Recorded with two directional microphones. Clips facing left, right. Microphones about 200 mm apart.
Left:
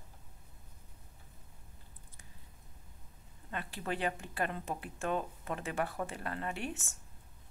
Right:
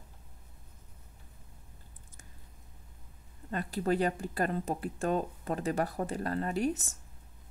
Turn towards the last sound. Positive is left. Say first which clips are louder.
# right 8 dB
turn(degrees=-40)  # may be behind; listen again after turning